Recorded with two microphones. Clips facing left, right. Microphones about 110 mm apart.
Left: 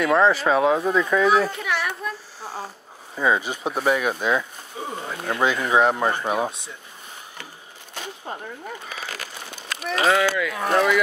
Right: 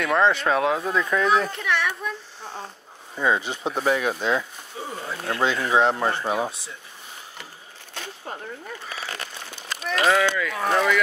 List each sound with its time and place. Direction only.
0.0 s speech: centre (ahead or behind)
8.8 s a sound: 5° left (ahead or behind)
10.0 s speech: 5° left (ahead or behind)